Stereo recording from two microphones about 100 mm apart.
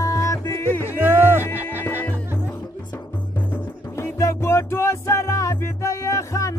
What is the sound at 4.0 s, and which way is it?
Music, 30° left (ahead or behind).